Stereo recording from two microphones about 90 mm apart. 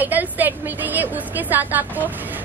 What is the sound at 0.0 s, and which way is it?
A woman's voice, 20° right (ahead or behind).